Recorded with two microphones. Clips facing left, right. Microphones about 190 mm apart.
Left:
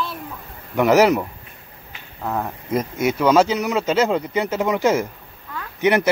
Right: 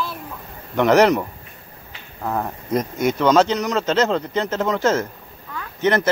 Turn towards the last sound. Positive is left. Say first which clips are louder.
# left 1 dB
turn(degrees=15)  # may be behind; listen again after turning